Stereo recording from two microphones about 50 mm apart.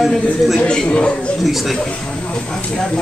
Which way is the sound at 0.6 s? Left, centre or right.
Centre.